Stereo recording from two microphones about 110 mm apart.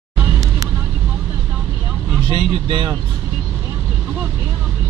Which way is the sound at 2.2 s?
55° right (ahead or behind).